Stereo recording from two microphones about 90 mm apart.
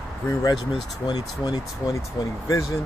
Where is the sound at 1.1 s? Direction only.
50° left (ahead or behind).